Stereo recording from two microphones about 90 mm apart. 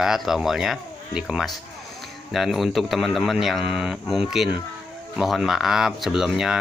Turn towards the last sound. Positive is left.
turn(degrees=-5)  # may be behind; listen again after turning